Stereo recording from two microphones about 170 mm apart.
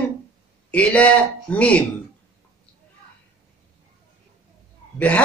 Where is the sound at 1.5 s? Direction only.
5° left (ahead or behind).